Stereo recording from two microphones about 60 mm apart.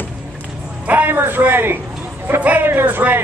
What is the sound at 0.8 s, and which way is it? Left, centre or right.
A man's voice, right.